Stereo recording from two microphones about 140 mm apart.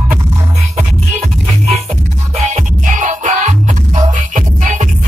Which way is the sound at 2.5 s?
60° right (ahead or behind).